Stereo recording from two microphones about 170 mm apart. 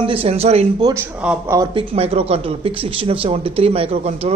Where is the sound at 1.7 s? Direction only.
35° right (ahead or behind).